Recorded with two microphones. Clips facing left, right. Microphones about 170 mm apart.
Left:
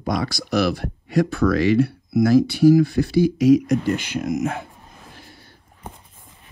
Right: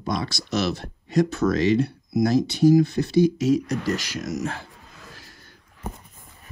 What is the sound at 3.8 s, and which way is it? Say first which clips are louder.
Speech: left 3 dB; 40° right (ahead or behind).